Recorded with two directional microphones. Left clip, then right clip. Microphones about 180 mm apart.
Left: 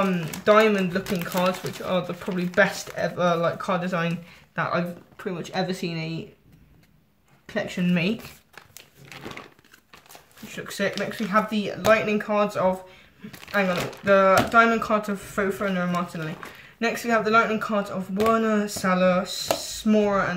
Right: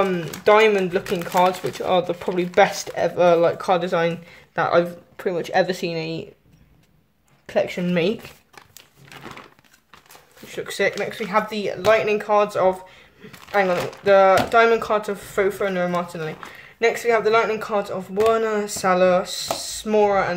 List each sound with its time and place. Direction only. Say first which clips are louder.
0.4 s speech: right 3 dB; 35° right (ahead or behind)
7.4 s speech: right 6 dB; 30° right (ahead or behind)
10.6 s speech: right 5 dB; 40° right (ahead or behind)